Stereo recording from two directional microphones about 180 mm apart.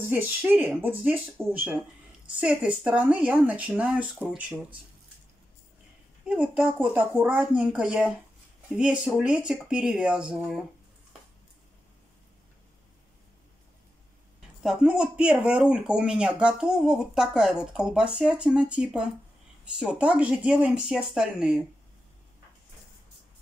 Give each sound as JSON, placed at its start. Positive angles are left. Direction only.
{"t": 0.0, "sound": "speech", "side_deg": -10}
{"t": 6.2, "sound": "speech", "side_deg": -5}
{"t": 14.6, "sound": "speech", "side_deg": -5}